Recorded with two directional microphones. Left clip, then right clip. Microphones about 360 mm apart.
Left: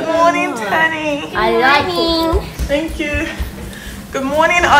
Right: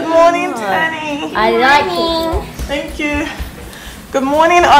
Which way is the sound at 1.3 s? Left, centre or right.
Right.